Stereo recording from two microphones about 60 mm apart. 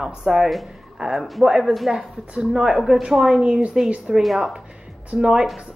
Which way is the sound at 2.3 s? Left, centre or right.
Centre.